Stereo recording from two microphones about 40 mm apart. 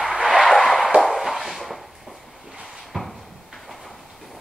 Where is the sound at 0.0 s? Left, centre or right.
Centre.